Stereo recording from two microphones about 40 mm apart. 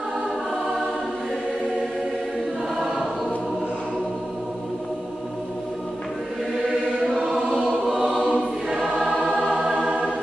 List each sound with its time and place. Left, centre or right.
7.1 s choir: centre
9.0 s music: centre
9.7 s music: right